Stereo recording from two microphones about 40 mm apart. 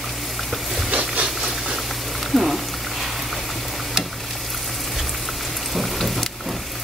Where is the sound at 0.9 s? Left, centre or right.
Right.